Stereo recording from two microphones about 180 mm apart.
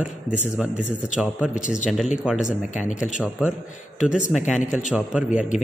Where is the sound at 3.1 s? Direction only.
5° right (ahead or behind).